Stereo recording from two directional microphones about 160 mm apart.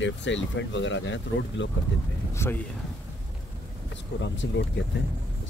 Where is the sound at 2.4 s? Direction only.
15° left (ahead or behind).